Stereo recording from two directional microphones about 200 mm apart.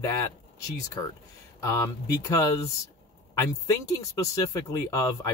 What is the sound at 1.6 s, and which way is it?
Speech, 15° left (ahead or behind).